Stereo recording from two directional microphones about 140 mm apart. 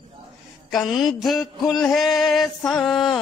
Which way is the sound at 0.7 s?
Centre (ahead or behind).